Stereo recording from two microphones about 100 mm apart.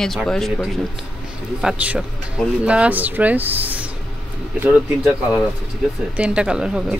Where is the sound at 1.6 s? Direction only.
15° right (ahead or behind).